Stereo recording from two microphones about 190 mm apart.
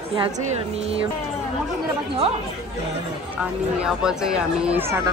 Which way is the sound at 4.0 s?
5° right (ahead or behind).